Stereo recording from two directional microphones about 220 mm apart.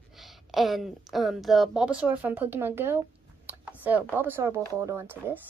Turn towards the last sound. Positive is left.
turn(degrees=-10)  # may be behind; listen again after turning